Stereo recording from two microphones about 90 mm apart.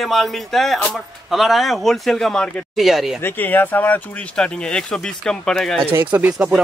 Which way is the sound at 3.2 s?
20° left (ahead or behind).